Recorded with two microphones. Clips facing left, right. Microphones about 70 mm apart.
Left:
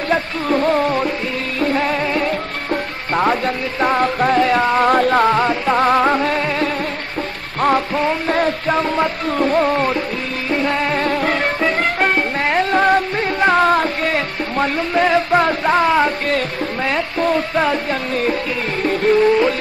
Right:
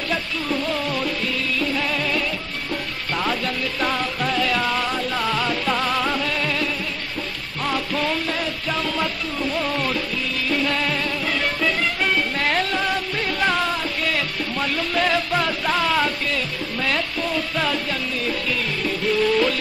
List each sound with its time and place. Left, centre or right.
0.1 s music: left
8.4 s music: left
17.2 s music: left
18.8 s music: left